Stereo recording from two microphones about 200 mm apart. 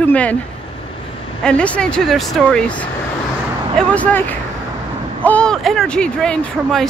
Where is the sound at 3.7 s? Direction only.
5° left (ahead or behind).